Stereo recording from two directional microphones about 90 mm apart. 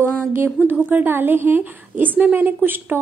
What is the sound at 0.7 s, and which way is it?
A woman's voice, 20° right (ahead or behind).